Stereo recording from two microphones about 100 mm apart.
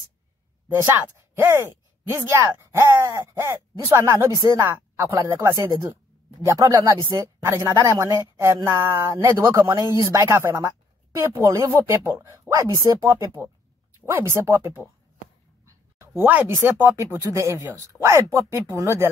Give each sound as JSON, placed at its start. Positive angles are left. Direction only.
{"t": 0.9, "sound": "speech", "side_deg": -25}
{"t": 16.3, "sound": "speech", "side_deg": -20}